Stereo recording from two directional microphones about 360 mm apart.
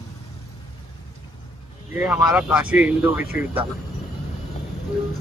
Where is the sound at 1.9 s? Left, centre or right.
Centre.